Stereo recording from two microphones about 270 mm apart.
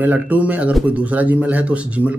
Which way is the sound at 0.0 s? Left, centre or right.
Centre.